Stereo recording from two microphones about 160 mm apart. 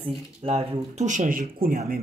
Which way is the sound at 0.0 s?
35° right (ahead or behind).